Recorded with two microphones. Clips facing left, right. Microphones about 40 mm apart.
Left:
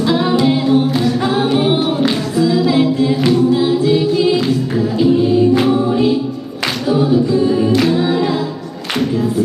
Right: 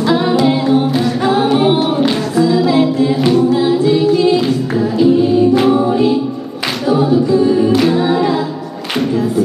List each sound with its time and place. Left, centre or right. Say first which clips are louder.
0.0 s a capella: right 1 dB; centre
6.9 s singing: right 2 dB; centre